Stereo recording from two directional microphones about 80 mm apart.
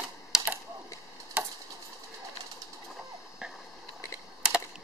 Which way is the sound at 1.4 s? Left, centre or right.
Centre.